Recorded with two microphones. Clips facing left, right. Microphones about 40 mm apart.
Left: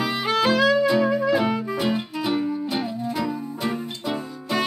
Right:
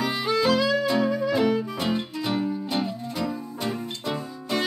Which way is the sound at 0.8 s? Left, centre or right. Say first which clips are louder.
Left 3 dB; centre.